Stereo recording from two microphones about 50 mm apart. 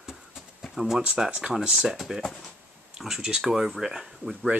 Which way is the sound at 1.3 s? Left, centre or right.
Right.